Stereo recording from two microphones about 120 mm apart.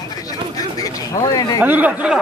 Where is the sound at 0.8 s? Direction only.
30° left (ahead or behind).